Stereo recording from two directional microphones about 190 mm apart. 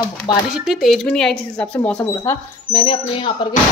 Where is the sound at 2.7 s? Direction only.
25° left (ahead or behind).